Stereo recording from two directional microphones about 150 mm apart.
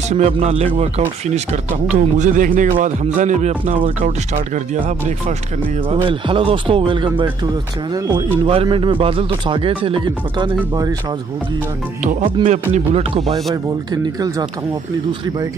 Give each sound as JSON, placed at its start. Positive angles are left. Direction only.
{"t": 0.1, "sound": "speech", "side_deg": -45}
{"t": 5.9, "sound": "speech", "side_deg": -35}
{"t": 8.5, "sound": "speech", "side_deg": -35}
{"t": 12.4, "sound": "speech", "side_deg": -45}